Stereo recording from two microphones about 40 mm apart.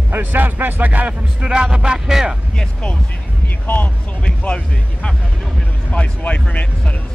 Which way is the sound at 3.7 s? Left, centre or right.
Left.